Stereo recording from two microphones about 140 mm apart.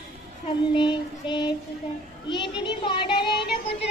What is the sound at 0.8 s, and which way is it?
Speech, 35° left (ahead or behind).